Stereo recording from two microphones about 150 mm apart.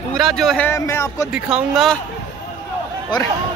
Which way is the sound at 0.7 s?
20° left (ahead or behind).